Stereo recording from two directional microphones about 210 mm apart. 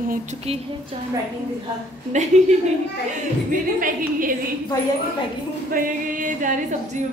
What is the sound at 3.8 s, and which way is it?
Speech, 40° right (ahead or behind).